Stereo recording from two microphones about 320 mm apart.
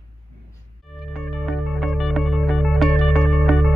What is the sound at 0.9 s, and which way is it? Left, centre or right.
Music, centre.